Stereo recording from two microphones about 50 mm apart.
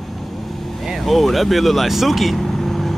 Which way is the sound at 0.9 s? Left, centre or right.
Centre.